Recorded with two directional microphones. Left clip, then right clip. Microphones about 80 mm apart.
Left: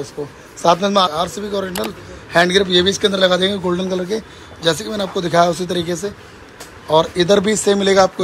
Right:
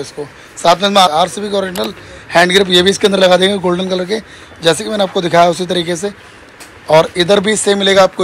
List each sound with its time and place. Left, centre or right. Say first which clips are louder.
0.2 s a man's voice: right 1 dB; centre
0.6 s a man's voice: right 4 dB; left
0.9 s a man's voice: right 6 dB; centre
3.7 s speech: right 4 dB; centre
4.6 s speech: right 6 dB; centre
7.2 s speech: right 3 dB; left